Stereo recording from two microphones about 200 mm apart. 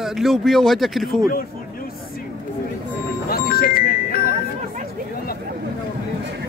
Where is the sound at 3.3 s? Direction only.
50° left (ahead or behind).